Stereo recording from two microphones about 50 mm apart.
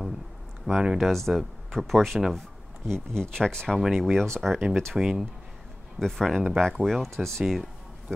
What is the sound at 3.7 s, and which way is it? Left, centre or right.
Speech, centre.